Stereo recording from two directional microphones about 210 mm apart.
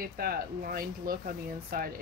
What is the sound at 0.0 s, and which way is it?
Speech, 45° right (ahead or behind).